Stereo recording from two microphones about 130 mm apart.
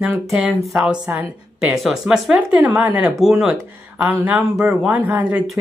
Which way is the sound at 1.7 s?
Centre (ahead or behind).